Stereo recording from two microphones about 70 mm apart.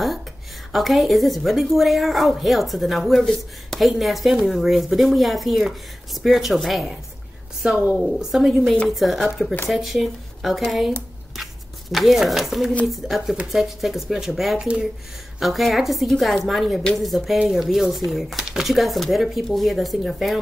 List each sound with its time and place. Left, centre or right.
0.7 s a woman's voice: centre
7.6 s a woman's voice: centre
11.9 s a woman's voice: centre